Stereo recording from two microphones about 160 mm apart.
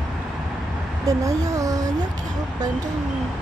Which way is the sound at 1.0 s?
20° right (ahead or behind).